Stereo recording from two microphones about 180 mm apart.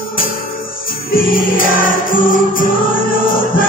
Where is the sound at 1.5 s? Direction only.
50° left (ahead or behind).